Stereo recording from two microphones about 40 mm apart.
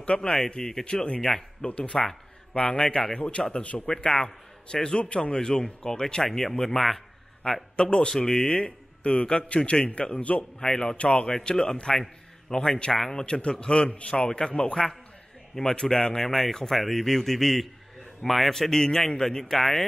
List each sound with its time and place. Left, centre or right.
0.2 s a man's voice: centre
1.8 s a man's voice: left
3.8 s a man's voice: centre
7.7 s a man's voice: left
10.6 s a man's voice: centre
11.0 s a man's voice: left
16.2 s speech: centre
18.5 s a man's voice: centre